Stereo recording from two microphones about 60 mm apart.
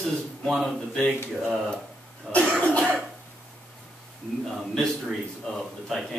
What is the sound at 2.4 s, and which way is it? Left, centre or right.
Cough, right.